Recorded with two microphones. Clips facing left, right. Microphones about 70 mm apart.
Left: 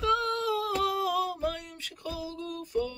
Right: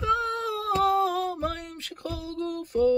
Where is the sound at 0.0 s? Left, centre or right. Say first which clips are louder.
Right 1 dB; right.